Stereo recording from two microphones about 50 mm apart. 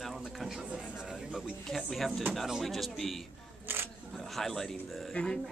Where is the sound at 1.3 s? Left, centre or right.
Centre.